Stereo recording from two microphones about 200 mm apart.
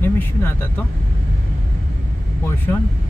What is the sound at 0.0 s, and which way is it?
Speech, 10° left (ahead or behind).